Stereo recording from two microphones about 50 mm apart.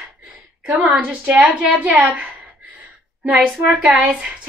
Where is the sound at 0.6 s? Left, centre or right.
Right.